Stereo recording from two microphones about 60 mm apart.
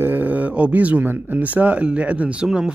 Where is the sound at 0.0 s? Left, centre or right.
Right.